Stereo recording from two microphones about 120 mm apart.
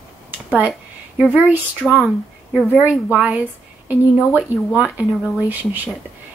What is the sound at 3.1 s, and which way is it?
A woman's voice, 10° right (ahead or behind).